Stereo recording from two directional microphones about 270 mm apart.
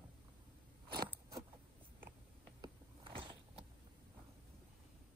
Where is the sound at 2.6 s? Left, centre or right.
Centre.